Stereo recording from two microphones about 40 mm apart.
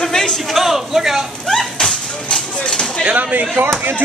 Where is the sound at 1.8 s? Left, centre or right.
Centre.